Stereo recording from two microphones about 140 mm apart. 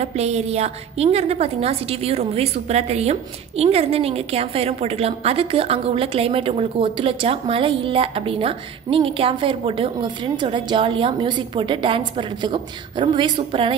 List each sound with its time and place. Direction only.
0.0 s a woman's voice: 50° right (ahead or behind)